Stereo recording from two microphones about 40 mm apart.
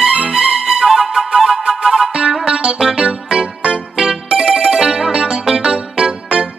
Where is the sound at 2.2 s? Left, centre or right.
Right.